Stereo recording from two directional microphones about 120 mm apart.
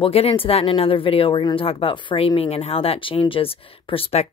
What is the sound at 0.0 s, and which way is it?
Speech, 55° left (ahead or behind).